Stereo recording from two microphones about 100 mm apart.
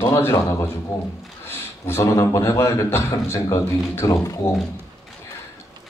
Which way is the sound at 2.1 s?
30° left (ahead or behind).